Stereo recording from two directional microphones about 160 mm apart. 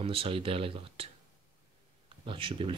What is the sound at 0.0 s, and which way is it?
Speech, 35° right (ahead or behind).